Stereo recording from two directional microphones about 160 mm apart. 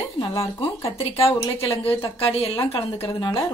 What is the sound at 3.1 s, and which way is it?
Speech, 25° left (ahead or behind).